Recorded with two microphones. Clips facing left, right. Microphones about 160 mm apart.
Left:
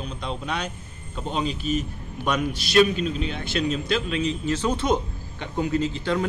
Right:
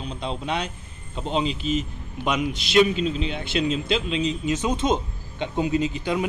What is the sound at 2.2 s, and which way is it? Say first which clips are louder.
A man's voice: even; 20° right (ahead or behind).